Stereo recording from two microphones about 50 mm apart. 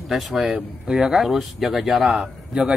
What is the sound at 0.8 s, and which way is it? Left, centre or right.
Speech, centre.